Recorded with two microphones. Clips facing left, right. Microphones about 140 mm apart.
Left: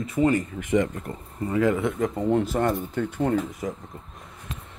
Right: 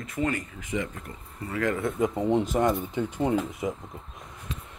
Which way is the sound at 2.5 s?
10° right (ahead or behind).